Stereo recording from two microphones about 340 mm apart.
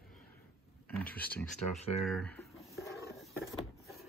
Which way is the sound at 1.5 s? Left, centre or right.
Centre.